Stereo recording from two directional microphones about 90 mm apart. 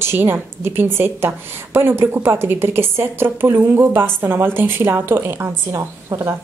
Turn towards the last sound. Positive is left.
turn(degrees=-35)  # may be behind; listen again after turning